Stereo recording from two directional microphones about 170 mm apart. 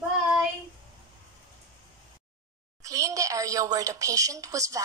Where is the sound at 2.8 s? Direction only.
20° right (ahead or behind).